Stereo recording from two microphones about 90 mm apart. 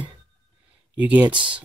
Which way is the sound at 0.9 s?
15° right (ahead or behind).